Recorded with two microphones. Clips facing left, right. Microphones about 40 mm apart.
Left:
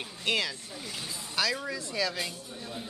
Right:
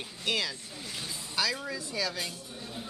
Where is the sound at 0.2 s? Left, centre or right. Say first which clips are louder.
Left 2 dB; centre.